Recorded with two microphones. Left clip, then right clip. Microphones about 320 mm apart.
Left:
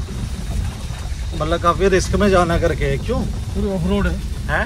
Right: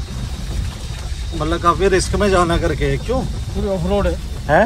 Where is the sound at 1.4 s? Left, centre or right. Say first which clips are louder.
Right 1 dB; centre.